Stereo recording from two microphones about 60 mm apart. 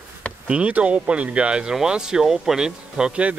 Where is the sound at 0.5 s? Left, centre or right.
Right.